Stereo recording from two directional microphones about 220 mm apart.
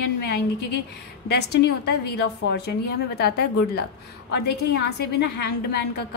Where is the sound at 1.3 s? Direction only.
50° left (ahead or behind).